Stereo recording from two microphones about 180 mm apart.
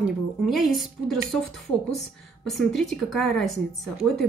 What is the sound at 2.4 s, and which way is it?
Speech, centre (ahead or behind).